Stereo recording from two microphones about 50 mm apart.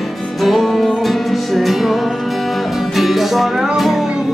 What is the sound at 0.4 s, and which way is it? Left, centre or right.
Music, centre.